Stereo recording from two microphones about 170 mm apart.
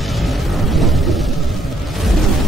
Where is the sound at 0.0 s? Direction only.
Centre (ahead or behind).